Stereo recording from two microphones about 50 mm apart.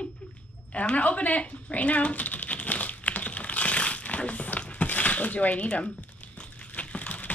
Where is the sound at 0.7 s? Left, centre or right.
Left.